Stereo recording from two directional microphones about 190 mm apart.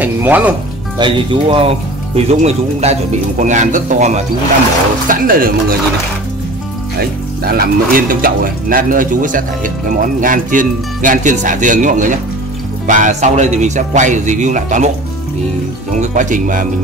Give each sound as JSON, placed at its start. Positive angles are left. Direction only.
{"t": 0.0, "sound": "speech", "side_deg": -10}
{"t": 0.9, "sound": "speech", "side_deg": -25}
{"t": 7.0, "sound": "speech", "side_deg": -55}
{"t": 16.0, "sound": "speech", "side_deg": -40}